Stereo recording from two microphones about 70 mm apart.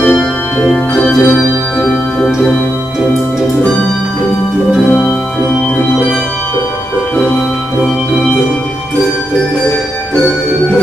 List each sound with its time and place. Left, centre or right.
0.7 s organ: centre
1.2 s organ: left
1.9 s organ: centre